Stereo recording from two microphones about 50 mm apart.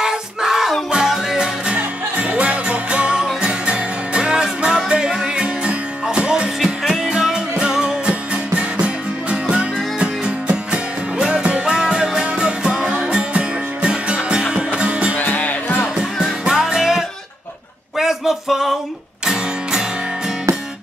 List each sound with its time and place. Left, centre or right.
0.0 s a sound: centre
0.9 s music: centre
1.7 s music: right
15.1 s music: left
16.0 s music: centre
17.9 s a sound: centre
19.2 s music: centre